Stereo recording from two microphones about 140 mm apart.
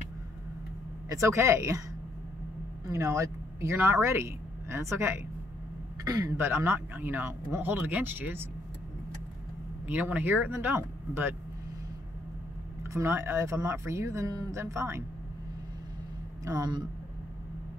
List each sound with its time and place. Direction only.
1.0 s speech: 20° right (ahead or behind)
2.9 s speech: 20° right (ahead or behind)
9.8 s speech: 10° right (ahead or behind)
12.9 s speech: 20° right (ahead or behind)
16.4 s speech: 25° right (ahead or behind)